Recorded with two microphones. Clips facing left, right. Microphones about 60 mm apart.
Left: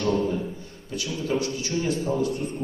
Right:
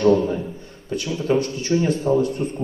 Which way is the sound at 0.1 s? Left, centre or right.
Right.